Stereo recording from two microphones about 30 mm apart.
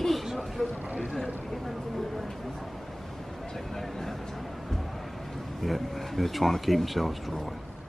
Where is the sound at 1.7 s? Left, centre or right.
Centre.